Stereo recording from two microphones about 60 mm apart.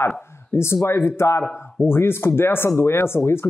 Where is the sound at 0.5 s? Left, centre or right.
Left.